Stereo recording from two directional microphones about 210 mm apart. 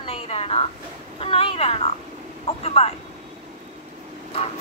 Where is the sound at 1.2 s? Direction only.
25° left (ahead or behind).